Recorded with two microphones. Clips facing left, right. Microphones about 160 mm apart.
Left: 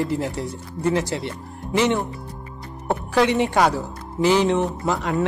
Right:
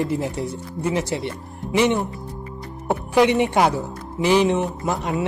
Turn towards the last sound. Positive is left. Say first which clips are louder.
# left 1 dB
turn(degrees=-20)  # may be behind; listen again after turning